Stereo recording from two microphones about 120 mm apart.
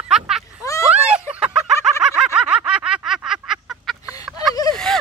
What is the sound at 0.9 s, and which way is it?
Snicker, 10° right (ahead or behind).